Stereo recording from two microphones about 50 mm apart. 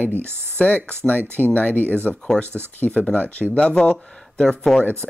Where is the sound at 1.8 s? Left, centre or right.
Right.